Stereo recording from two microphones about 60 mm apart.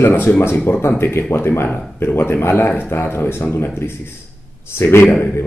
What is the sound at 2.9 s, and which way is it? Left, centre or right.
Speech, left.